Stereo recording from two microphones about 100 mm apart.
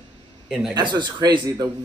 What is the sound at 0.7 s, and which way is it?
Speech, 50° right (ahead or behind).